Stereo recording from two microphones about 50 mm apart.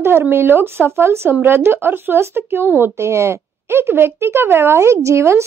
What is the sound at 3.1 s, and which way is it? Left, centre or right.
Speech, right.